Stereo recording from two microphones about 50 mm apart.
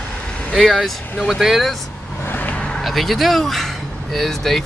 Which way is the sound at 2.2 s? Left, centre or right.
Left.